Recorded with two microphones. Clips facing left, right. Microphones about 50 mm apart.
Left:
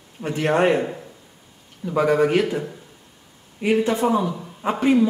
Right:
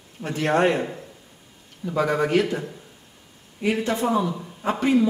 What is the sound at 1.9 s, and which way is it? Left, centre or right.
Speech, centre.